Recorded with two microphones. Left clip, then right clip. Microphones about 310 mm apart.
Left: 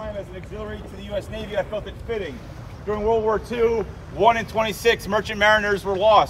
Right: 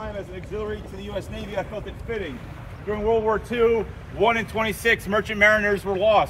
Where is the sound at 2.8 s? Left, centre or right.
Left.